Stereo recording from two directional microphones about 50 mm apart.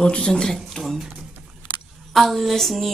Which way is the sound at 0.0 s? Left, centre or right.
Centre.